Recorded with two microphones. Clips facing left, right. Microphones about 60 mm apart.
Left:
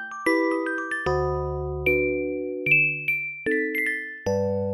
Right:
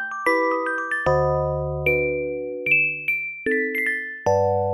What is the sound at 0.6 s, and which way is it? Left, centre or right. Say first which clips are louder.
Music: right 4 dB; centre.